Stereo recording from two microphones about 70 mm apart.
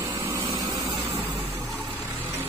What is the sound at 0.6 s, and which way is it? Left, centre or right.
Vehicle, right.